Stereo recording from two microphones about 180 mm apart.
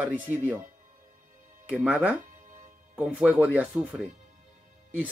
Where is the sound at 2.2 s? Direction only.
45° right (ahead or behind).